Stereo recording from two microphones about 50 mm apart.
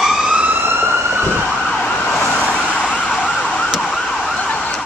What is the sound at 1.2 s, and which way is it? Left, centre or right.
Emergency vehicle, right.